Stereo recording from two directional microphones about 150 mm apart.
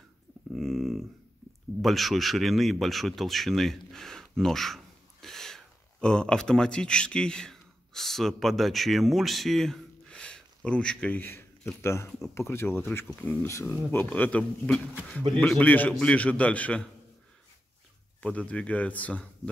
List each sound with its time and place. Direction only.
0.5 s a sound: centre (ahead or behind)
1.8 s speech: centre (ahead or behind)
18.2 s speech: 10° left (ahead or behind)